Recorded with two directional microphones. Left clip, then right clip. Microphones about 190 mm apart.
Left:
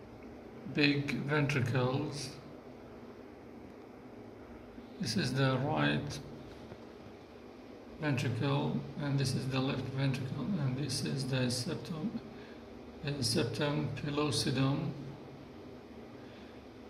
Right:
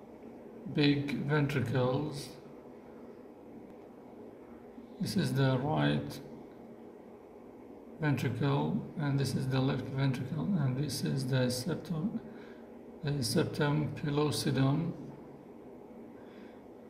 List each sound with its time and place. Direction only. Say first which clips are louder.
0.7 s speech: even; 15° right (ahead or behind)
5.0 s speech: even; 15° right (ahead or behind)
8.0 s speech: right 1 dB; 15° right (ahead or behind)
13.0 s speech: right 1 dB; 20° right (ahead or behind)